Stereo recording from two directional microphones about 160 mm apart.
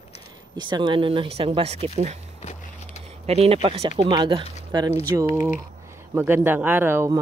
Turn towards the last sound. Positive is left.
turn(degrees=-15)  # may be behind; listen again after turning